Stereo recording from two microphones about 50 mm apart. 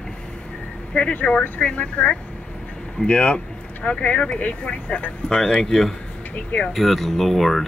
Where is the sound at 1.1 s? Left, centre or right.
Left; by 3.4 s centre.